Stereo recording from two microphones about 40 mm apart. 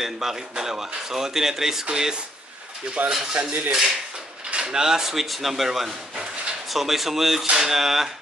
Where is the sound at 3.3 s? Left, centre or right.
Right.